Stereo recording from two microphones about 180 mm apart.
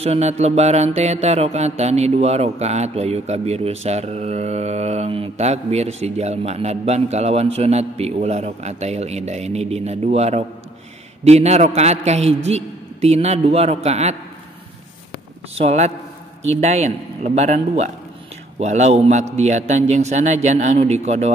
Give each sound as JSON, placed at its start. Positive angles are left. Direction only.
{"t": 0.0, "sound": "mantra", "side_deg": -35}
{"t": 15.5, "sound": "mantra", "side_deg": -35}